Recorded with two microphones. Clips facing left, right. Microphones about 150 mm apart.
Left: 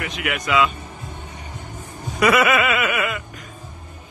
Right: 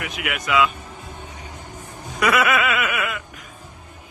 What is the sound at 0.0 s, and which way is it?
Speech, 5° right (ahead or behind).